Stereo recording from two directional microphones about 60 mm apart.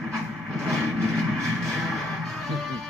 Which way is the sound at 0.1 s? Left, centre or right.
Centre.